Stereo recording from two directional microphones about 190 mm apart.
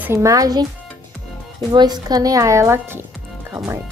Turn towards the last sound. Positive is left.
turn(degrees=-15)  # may be behind; listen again after turning